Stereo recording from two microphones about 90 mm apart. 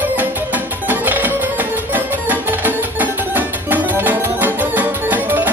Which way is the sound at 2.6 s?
20° right (ahead or behind).